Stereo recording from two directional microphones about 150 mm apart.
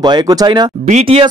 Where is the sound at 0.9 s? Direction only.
40° right (ahead or behind).